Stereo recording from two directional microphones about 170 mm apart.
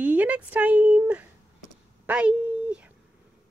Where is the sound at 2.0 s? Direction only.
5° right (ahead or behind).